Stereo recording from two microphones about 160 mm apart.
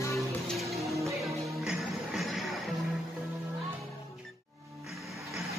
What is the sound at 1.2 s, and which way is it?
Music, centre (ahead or behind).